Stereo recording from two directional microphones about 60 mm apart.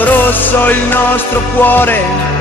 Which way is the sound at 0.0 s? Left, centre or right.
Left.